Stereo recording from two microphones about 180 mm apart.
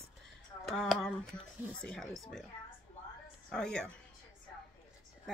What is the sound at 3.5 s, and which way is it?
Speech, 5° left (ahead or behind).